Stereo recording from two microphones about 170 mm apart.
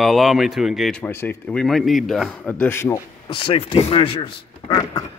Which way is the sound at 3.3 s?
35° left (ahead or behind).